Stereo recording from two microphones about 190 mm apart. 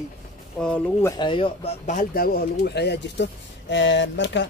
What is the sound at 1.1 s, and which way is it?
Speech, 25° left (ahead or behind).